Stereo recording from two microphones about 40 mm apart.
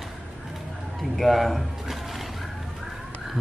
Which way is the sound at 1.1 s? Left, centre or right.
Centre.